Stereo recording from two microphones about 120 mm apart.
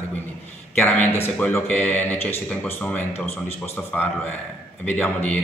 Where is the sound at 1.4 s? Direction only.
10° left (ahead or behind).